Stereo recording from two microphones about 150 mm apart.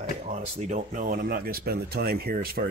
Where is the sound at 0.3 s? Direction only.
55° right (ahead or behind).